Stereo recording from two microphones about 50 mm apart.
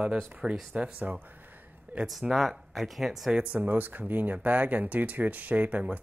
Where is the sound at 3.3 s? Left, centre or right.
Right.